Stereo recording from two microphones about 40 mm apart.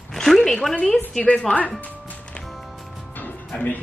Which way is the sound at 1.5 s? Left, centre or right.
Left.